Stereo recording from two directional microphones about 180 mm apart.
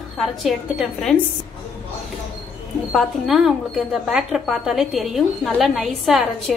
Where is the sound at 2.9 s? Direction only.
Centre (ahead or behind).